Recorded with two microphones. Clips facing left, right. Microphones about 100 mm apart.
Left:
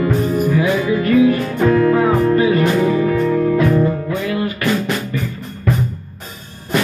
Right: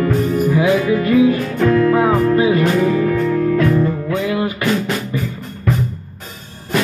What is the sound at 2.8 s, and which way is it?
Music, 20° left (ahead or behind).